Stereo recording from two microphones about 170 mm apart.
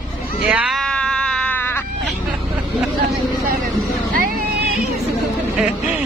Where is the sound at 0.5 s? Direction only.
5° right (ahead or behind).